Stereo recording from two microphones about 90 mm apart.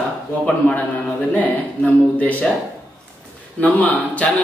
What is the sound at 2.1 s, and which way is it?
Speech, 15° left (ahead or behind).